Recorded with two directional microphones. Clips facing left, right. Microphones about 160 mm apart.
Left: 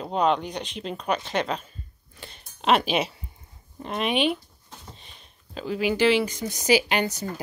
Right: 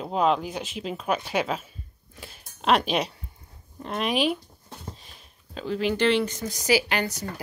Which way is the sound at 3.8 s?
Centre (ahead or behind).